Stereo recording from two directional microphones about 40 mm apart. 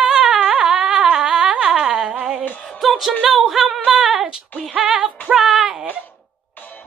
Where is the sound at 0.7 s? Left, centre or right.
Centre.